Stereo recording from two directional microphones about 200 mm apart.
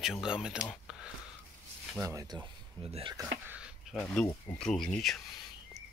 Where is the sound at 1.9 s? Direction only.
15° right (ahead or behind).